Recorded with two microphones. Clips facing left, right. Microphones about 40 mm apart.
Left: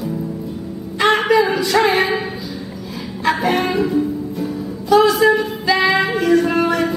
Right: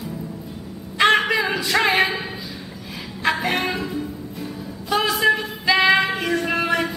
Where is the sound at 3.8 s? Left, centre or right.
Centre.